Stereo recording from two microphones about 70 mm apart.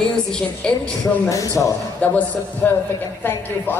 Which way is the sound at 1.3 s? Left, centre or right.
Left.